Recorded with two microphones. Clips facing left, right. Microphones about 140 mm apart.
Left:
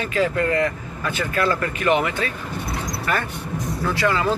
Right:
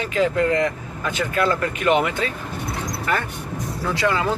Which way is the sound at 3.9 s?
20° right (ahead or behind).